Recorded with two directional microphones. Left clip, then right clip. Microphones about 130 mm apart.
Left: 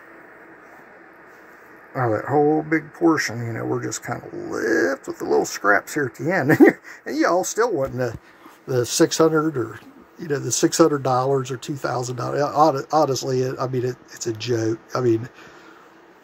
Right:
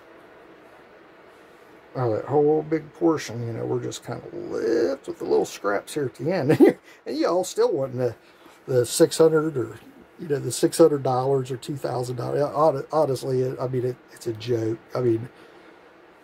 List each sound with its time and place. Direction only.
2.0 s a man's voice: 20° left (ahead or behind); by 12.4 s 5° left (ahead or behind)
12.5 s speech: 20° left (ahead or behind)